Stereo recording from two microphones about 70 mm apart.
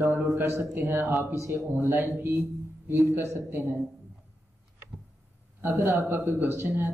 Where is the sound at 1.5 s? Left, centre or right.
Right.